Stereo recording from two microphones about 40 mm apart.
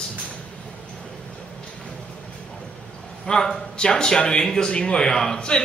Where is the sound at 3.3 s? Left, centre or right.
Left.